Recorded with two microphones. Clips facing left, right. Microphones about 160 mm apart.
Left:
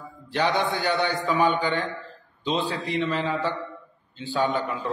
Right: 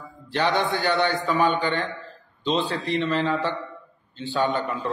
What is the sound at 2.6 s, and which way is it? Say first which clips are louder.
Speech: right 1 dB; centre (ahead or behind).